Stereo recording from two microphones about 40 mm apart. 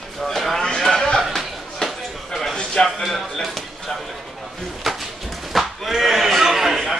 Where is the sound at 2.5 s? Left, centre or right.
Left.